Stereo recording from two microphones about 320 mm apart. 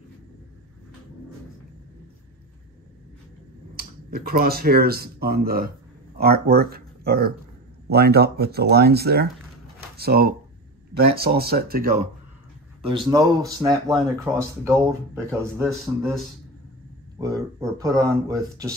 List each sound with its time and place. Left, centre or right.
3.7 s speech: right
12.8 s speech: centre
17.2 s speech: centre